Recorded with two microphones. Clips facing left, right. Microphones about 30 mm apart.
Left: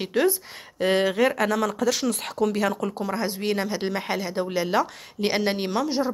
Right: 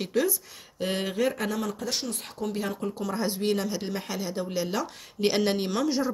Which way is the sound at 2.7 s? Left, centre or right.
Left.